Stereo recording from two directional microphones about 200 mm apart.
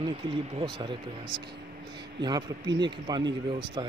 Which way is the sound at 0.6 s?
25° right (ahead or behind).